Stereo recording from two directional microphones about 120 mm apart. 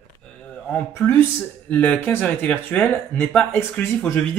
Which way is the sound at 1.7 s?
15° left (ahead or behind).